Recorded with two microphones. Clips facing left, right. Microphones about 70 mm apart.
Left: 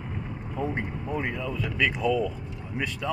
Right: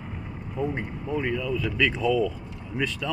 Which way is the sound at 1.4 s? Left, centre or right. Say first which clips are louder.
Right 2 dB; left.